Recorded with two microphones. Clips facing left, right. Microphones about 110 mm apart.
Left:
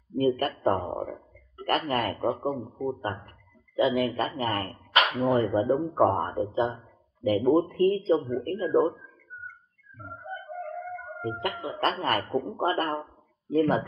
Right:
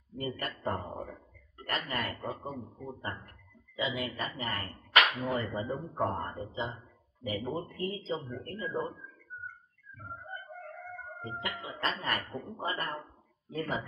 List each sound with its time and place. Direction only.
0.2 s a man's voice: 50° left (ahead or behind)
11.4 s a man's voice: 50° left (ahead or behind)